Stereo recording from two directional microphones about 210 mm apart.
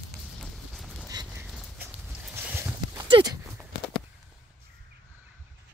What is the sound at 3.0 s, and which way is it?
Horse, 20° right (ahead or behind).